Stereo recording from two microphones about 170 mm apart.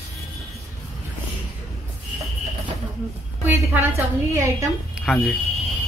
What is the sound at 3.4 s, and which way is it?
Speech, 10° right (ahead or behind).